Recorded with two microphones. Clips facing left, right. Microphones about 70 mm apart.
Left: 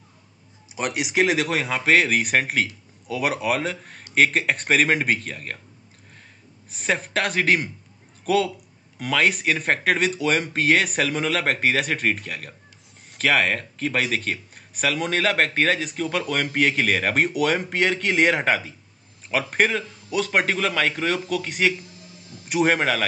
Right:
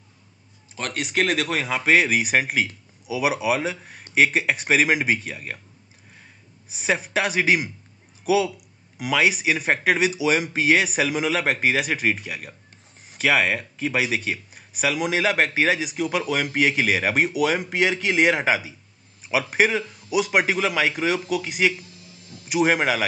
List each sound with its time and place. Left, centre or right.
0.7 s speech: centre
6.7 s a man's voice: centre